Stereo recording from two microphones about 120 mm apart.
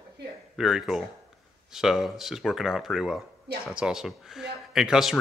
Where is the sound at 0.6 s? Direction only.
5° right (ahead or behind).